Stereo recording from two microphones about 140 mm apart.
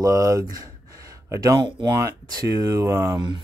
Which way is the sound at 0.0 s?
25° right (ahead or behind).